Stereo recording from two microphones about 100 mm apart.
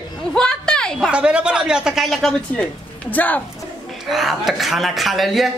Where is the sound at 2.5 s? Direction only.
15° left (ahead or behind).